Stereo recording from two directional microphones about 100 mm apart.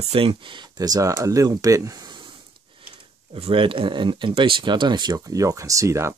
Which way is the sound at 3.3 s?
65° right (ahead or behind).